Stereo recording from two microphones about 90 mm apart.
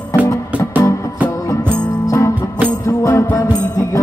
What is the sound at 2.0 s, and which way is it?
Music, 35° left (ahead or behind).